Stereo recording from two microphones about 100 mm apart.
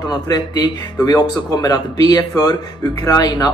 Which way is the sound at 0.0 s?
45° left (ahead or behind).